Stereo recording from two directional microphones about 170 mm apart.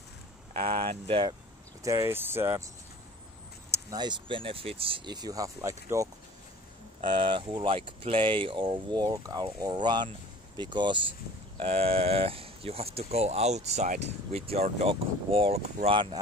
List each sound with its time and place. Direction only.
0.5 s speech: 40° right (ahead or behind)
1.8 s speech: 15° right (ahead or behind)
3.7 s speech: 25° right (ahead or behind)
7.0 s speech: 30° right (ahead or behind)